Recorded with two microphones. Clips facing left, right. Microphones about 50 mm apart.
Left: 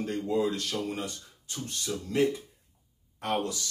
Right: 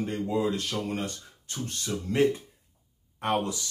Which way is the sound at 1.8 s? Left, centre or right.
Right.